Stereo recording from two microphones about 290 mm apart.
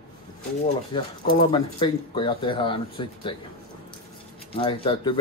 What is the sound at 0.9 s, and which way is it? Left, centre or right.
Speech, centre.